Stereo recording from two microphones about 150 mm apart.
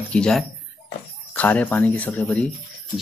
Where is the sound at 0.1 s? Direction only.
5° left (ahead or behind).